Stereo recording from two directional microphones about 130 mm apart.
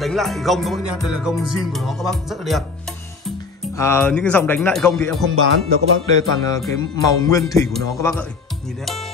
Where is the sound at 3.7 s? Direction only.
20° left (ahead or behind).